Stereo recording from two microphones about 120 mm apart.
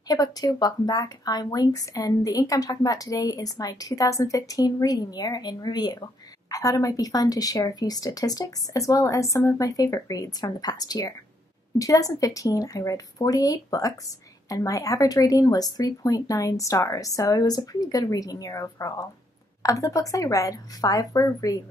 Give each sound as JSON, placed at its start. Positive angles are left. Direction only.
{"t": 0.1, "sound": "a woman's voice", "side_deg": 30}